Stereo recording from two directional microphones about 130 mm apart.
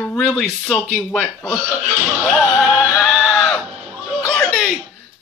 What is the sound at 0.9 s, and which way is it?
Speech, 10° left (ahead or behind).